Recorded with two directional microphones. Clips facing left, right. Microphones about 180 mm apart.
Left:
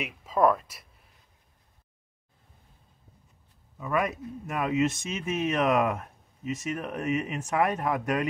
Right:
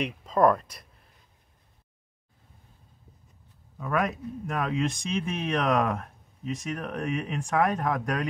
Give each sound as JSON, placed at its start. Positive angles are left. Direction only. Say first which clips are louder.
{"t": 0.0, "sound": "speech", "louder": "right 2 dB", "side_deg": 5}
{"t": 3.8, "sound": "speech", "louder": "even", "side_deg": 0}